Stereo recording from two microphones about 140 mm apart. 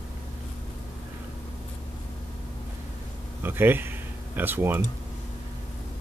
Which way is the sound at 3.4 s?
15° right (ahead or behind).